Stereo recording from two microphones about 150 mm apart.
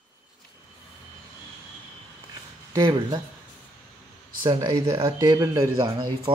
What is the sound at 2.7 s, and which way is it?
Speech, 25° right (ahead or behind).